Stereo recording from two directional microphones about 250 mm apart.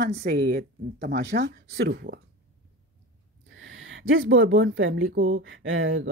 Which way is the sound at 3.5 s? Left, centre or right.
Right.